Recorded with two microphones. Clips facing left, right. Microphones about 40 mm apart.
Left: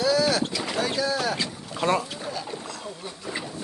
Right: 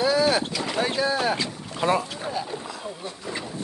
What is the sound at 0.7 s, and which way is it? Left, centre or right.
Speech, right.